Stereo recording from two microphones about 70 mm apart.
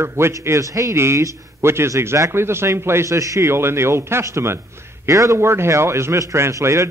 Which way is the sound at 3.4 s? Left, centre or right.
Right.